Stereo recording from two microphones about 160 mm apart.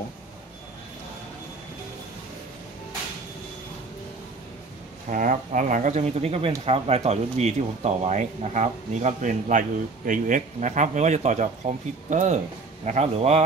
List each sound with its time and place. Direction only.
5.1 s a man's voice: 55° right (ahead or behind)